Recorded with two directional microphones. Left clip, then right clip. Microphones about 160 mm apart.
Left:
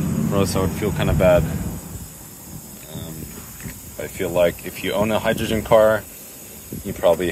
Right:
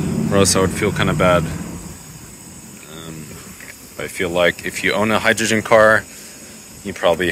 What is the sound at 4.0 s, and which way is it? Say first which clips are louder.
Speech: right 2 dB; 10° left (ahead or behind).